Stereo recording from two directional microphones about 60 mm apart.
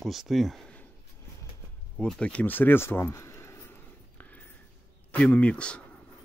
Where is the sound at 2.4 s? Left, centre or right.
Left.